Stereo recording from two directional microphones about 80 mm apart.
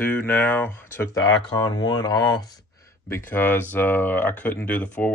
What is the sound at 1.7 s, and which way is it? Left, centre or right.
Speech, left.